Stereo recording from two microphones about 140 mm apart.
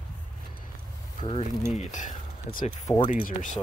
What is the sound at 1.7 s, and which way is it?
Speech, 60° left (ahead or behind).